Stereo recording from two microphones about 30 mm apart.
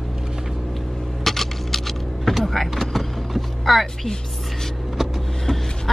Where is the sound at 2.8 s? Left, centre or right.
Centre.